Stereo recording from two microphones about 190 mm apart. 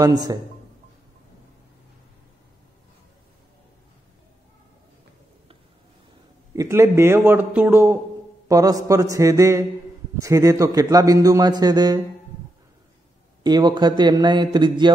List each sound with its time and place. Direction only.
0.0 s a man's voice: 20° right (ahead or behind)
6.5 s a man's voice: 15° right (ahead or behind)
13.4 s a man's voice: 20° right (ahead or behind)